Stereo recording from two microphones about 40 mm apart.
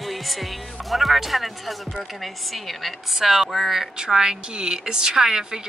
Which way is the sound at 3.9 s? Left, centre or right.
Centre.